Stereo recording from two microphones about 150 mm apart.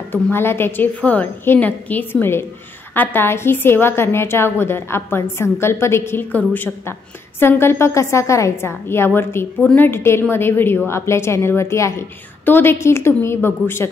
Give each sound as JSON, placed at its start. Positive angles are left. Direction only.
{"t": 0.1, "sound": "a woman's voice", "side_deg": 15}